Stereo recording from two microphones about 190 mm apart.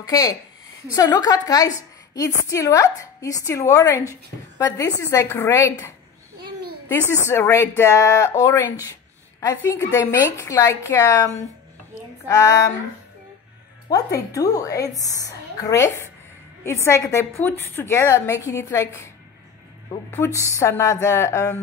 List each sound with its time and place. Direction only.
0.0 s a woman's voice: 20° left (ahead or behind)
7.1 s a woman's voice: 15° left (ahead or behind)
12.3 s a woman's voice: 15° left (ahead or behind)
13.8 s a woman's voice: 20° left (ahead or behind)
19.9 s a woman's voice: 15° left (ahead or behind)